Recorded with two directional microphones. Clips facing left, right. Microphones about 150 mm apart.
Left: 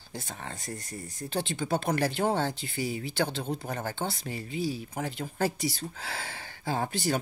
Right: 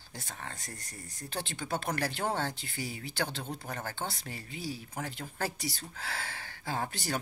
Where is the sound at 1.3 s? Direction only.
25° left (ahead or behind).